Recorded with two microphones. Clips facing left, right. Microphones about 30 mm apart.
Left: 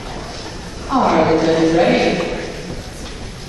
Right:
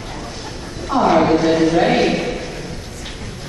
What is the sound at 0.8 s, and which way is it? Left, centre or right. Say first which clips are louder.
A man's voice: even; centre.